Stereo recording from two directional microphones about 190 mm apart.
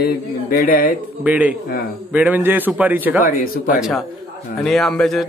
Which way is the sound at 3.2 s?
50° left (ahead or behind).